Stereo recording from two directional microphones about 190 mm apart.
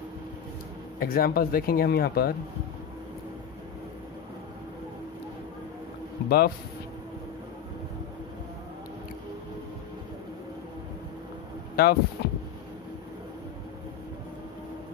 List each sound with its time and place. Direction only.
0.9 s speech: 50° left (ahead or behind)
6.2 s speech: 55° left (ahead or behind)
11.7 s speech: 55° left (ahead or behind)